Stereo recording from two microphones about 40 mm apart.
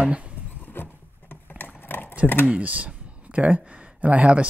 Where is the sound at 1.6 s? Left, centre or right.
Left.